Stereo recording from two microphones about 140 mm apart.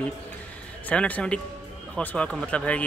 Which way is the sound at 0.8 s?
10° left (ahead or behind).